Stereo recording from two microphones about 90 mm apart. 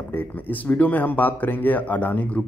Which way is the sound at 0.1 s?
20° left (ahead or behind).